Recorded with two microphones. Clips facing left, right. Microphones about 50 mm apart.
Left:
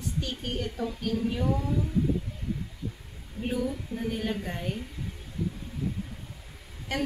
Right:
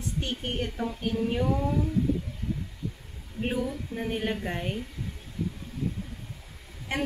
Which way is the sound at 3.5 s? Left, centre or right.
Right.